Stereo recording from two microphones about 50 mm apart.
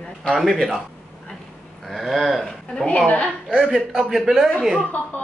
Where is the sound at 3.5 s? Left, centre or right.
Centre.